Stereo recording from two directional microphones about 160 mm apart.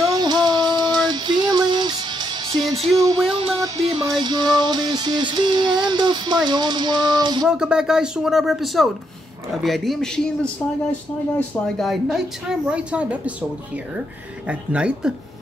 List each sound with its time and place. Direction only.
0.0 s music: 25° right (ahead or behind)
3.3 s a sound: 35° right (ahead or behind)
3.7 s music: 40° right (ahead or behind)
4.1 s music: 25° right (ahead or behind)
7.4 s speech: 5° right (ahead or behind)
14.5 s speech: 5° right (ahead or behind)